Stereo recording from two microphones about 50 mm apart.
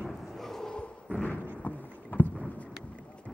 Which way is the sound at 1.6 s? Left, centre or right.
Left.